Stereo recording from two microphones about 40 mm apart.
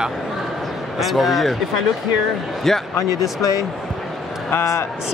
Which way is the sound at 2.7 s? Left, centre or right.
Centre.